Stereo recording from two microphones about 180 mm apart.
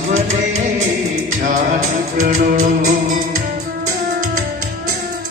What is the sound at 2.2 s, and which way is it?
Music, 45° right (ahead or behind).